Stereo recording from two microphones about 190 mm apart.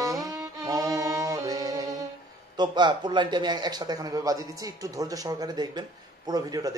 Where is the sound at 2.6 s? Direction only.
25° right (ahead or behind).